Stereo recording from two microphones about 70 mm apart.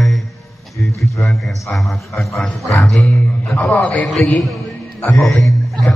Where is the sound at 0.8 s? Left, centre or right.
Centre.